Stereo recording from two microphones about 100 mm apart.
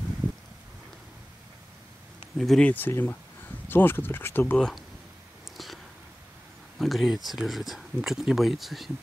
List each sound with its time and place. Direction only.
2.3 s speech: centre (ahead or behind)
2.7 s speech: 20° left (ahead or behind)
4.6 s speech: 5° left (ahead or behind)
6.8 s speech: centre (ahead or behind)